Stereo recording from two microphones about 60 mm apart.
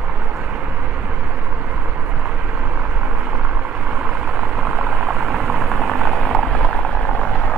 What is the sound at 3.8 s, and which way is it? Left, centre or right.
Vehicle, centre.